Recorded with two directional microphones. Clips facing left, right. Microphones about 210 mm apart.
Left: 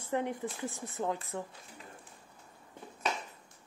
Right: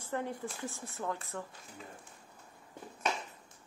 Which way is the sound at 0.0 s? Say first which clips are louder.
Left 4 dB; 20° left (ahead or behind).